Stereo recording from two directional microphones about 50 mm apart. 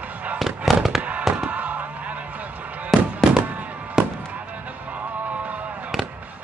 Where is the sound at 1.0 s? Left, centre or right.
Right.